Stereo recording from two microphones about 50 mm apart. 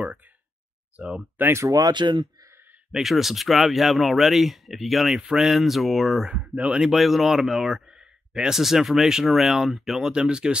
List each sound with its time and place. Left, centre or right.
0.9 s speech: centre
1.4 s speech: right
3.0 s speech: centre
5.1 s speech: centre
6.3 s speech: right
6.9 s speech: centre
10.0 s speech: centre